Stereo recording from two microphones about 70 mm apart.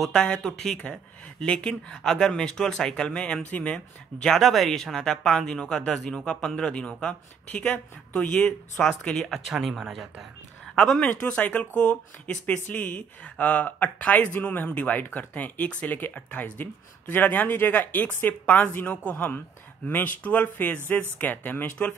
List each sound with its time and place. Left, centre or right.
0.0 s speech: centre
3.7 s speech: centre